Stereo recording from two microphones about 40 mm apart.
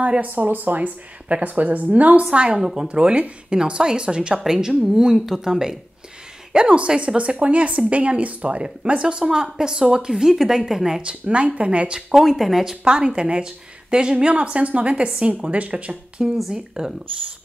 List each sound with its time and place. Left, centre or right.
0.2 s speech: right
2.5 s speech: centre
6.5 s speech: right
11.0 s speech: right
12.1 s speech: centre
12.8 s speech: right
16.2 s speech: centre